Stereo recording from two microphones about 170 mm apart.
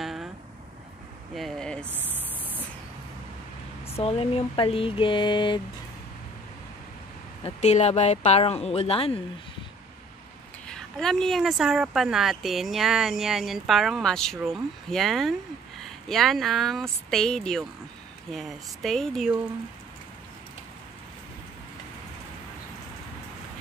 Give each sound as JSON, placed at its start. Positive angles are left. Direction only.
{"t": 0.0, "sound": "a sound", "side_deg": 0}
{"t": 1.3, "sound": "speech", "side_deg": 0}
{"t": 1.9, "sound": "a sound", "side_deg": -10}
{"t": 3.8, "sound": "speech", "side_deg": 35}
{"t": 7.4, "sound": "speech", "side_deg": 40}
{"t": 10.7, "sound": "speech", "side_deg": 5}